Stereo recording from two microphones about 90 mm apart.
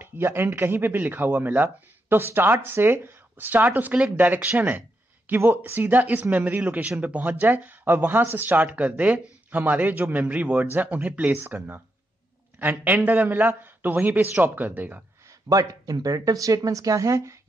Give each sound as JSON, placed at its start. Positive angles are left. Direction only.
{"t": 0.0, "sound": "speech", "side_deg": -25}
{"t": 15.4, "sound": "speech", "side_deg": -40}